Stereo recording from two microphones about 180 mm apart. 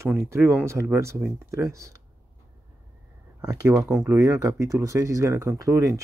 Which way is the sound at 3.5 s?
20° right (ahead or behind).